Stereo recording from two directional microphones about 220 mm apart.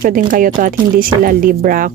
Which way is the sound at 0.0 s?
40° right (ahead or behind).